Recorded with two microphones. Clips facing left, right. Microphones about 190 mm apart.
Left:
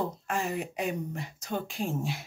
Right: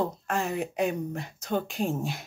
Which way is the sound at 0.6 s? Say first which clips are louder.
Right 4 dB; 55° right (ahead or behind).